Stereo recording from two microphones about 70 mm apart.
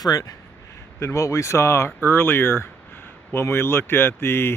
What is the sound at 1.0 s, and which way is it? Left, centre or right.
Speech, left.